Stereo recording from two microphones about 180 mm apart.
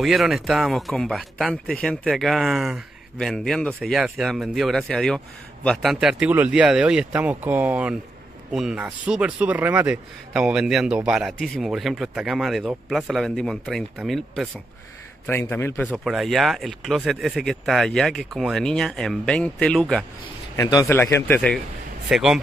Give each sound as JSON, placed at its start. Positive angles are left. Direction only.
{"t": 0.0, "sound": "speech", "side_deg": 0}
{"t": 15.2, "sound": "speech", "side_deg": 10}
{"t": 20.5, "sound": "a man's voice", "side_deg": 20}
{"t": 22.1, "sound": "speech", "side_deg": -5}